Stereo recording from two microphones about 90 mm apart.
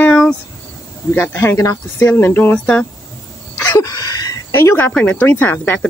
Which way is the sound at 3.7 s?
45° left (ahead or behind).